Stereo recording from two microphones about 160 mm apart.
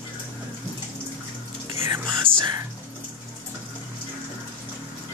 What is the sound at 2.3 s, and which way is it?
Speech, 65° right (ahead or behind).